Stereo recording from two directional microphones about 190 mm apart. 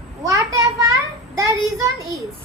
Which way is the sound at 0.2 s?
15° right (ahead or behind).